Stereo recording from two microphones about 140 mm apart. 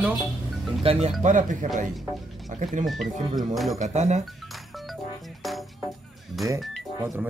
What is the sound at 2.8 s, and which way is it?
Speech, centre (ahead or behind).